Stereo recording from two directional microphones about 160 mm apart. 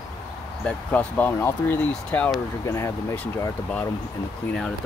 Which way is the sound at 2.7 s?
20° left (ahead or behind).